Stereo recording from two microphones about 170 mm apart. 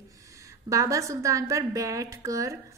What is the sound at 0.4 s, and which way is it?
A woman's voice, 20° right (ahead or behind).